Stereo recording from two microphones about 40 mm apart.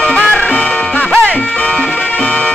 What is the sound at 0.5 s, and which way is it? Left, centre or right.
Music, left.